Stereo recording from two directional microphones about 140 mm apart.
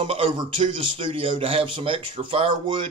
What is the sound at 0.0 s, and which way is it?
Speech, 40° right (ahead or behind).